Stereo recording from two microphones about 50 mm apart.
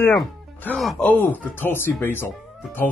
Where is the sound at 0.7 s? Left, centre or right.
Left.